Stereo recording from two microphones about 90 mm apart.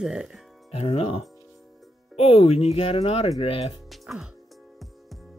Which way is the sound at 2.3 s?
90° left.